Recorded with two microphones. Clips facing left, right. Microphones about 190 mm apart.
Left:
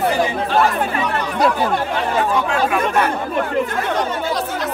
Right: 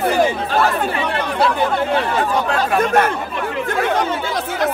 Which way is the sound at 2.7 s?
45° right (ahead or behind).